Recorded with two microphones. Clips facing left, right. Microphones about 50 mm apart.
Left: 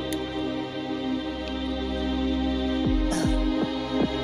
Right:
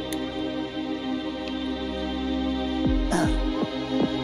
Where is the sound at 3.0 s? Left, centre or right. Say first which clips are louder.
Right 2 dB; right.